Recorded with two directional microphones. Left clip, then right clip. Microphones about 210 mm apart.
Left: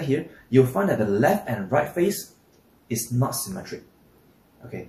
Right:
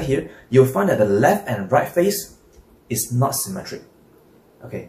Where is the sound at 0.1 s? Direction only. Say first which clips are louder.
Right 4 dB; 15° right (ahead or behind).